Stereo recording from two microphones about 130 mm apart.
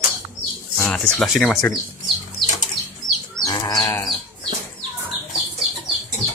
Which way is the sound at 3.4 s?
30° left (ahead or behind).